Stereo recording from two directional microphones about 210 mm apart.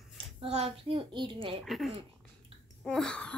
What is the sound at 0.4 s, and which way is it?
A woman's voice, 30° right (ahead or behind).